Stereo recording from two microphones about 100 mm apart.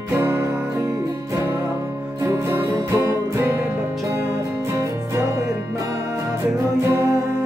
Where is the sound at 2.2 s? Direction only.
25° right (ahead or behind).